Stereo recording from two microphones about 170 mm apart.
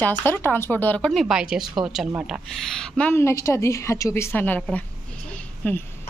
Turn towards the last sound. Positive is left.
turn(degrees=10)  # may be behind; listen again after turning